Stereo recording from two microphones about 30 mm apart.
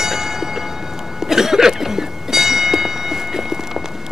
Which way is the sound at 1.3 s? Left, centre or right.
Centre.